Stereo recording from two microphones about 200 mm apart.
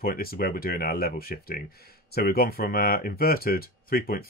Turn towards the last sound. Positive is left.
turn(degrees=45)  # may be behind; listen again after turning